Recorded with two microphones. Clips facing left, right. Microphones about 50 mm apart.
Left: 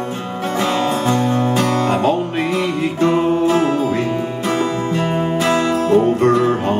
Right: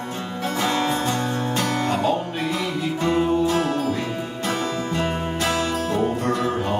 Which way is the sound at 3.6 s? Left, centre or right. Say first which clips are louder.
Left 6 dB; left.